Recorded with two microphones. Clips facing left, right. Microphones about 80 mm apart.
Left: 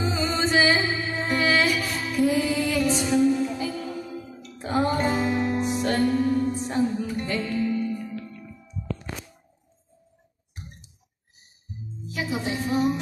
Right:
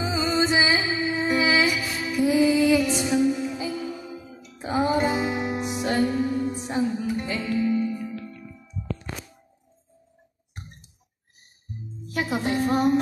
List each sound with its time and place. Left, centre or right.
0.0 s music: centre
12.1 s music: right